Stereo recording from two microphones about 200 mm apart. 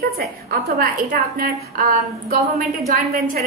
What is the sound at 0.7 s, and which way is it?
Speech, 45° right (ahead or behind).